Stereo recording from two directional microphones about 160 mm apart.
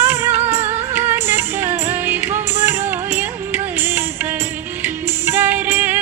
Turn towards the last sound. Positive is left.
turn(degrees=-10)  # may be behind; listen again after turning